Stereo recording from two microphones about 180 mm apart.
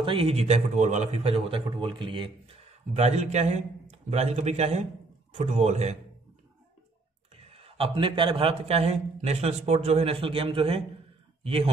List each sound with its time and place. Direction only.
0.0 s a man's voice: 30° right (ahead or behind)
3.0 s a man's voice: 40° right (ahead or behind)
7.4 s a man's voice: 35° right (ahead or behind)